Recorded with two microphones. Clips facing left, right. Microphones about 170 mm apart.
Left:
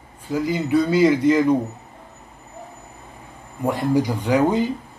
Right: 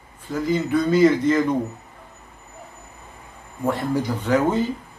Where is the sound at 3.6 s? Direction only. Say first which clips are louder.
Left 3 dB; 15° left (ahead or behind).